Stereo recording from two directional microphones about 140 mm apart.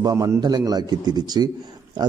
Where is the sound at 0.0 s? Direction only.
25° right (ahead or behind).